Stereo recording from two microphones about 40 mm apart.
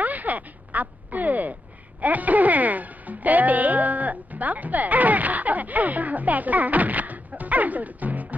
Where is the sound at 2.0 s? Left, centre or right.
Right.